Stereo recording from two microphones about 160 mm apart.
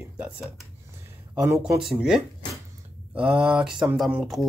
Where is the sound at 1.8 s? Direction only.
5° right (ahead or behind).